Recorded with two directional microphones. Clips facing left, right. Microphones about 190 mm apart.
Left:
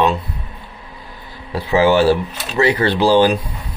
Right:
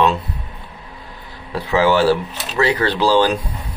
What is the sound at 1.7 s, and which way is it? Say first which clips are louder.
Speech: left 2 dB; 15° left (ahead or behind).